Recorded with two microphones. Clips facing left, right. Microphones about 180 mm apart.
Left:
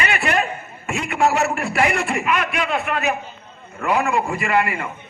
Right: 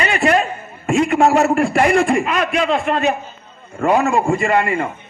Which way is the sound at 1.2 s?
30° right (ahead or behind).